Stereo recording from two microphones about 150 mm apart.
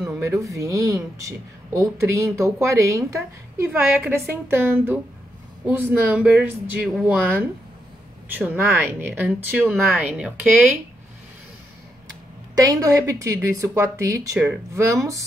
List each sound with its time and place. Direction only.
0.4 s a woman's voice: 20° right (ahead or behind)
12.6 s a woman's voice: 20° right (ahead or behind)